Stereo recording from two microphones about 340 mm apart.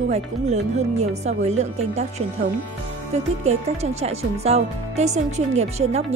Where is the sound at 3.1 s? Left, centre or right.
Centre.